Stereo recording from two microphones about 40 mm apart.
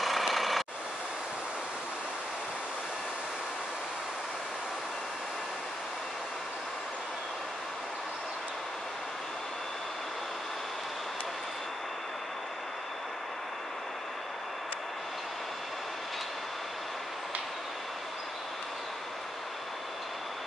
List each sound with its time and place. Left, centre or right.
0.3 s vehicle: centre